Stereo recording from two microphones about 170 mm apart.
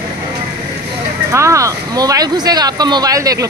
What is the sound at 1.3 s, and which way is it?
Speech, 15° right (ahead or behind).